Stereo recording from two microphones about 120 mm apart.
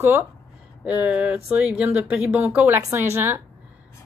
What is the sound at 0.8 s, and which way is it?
A woman's voice, 10° right (ahead or behind).